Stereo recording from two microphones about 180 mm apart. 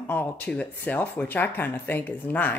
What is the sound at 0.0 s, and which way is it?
Speech, 10° left (ahead or behind).